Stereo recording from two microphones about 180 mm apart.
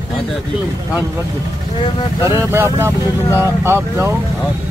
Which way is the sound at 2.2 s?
15° right (ahead or behind).